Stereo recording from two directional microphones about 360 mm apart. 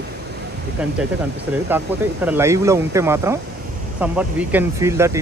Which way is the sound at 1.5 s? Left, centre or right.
Centre.